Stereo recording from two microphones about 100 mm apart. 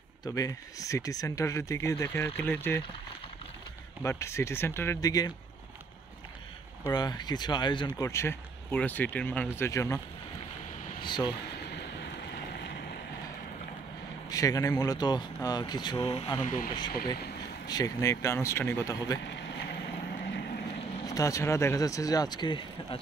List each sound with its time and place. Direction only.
0.2 s speech: 35° left (ahead or behind)
4.0 s speech: 30° left (ahead or behind)
5.0 s speech: 35° left (ahead or behind)
6.9 s speech: 45° left (ahead or behind)
8.0 s speech: 30° left (ahead or behind)
9.7 s speech: 35° left (ahead or behind)
11.0 s speech: 50° left (ahead or behind)
14.3 s speech: 35° left (ahead or behind)
17.6 s speech: 35° left (ahead or behind)
19.1 s speech: 35° left (ahead or behind)
21.0 s speech: 35° left (ahead or behind); by 22.9 s 50° left (ahead or behind)